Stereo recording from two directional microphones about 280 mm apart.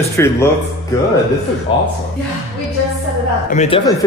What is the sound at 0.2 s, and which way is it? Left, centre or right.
Speech, centre.